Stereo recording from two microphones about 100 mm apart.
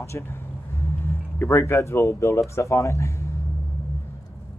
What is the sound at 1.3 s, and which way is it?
Speech, 25° left (ahead or behind).